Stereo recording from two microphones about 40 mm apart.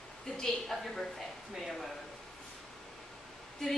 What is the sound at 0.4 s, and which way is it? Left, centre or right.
Speech, centre.